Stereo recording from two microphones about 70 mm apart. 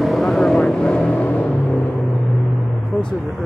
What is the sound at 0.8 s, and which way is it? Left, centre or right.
Vehicle, centre.